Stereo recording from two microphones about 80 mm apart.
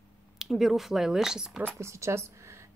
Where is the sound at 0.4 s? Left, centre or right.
Centre.